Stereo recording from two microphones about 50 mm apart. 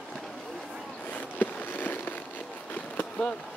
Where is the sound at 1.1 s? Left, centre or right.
Left.